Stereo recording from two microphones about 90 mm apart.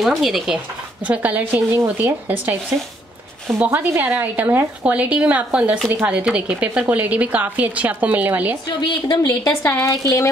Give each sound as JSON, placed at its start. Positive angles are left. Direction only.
{"t": 0.0, "sound": "speech", "side_deg": 0}
{"t": 1.0, "sound": "a woman's voice", "side_deg": -15}
{"t": 3.6, "sound": "speech", "side_deg": -20}
{"t": 8.6, "sound": "a woman's voice", "side_deg": 60}
{"t": 9.6, "sound": "a woman's voice", "side_deg": 25}
{"t": 9.8, "sound": "a woman's voice", "side_deg": 40}